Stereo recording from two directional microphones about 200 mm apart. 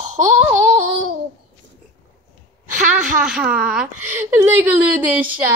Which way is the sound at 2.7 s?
40° right (ahead or behind).